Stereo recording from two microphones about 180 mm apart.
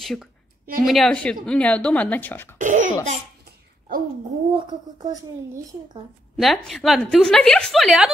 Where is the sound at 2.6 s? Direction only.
45° right (ahead or behind).